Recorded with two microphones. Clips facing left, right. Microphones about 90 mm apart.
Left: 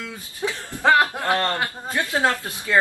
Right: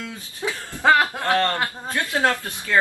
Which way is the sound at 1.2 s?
15° left (ahead or behind).